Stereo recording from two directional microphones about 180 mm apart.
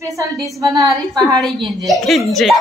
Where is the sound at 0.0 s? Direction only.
15° right (ahead or behind).